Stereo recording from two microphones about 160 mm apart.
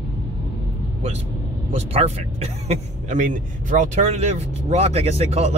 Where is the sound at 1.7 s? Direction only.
45° right (ahead or behind).